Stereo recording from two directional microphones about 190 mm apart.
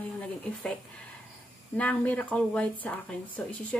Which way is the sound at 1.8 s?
5° left (ahead or behind).